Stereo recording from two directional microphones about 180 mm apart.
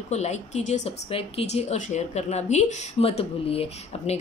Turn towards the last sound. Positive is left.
turn(degrees=30)  # may be behind; listen again after turning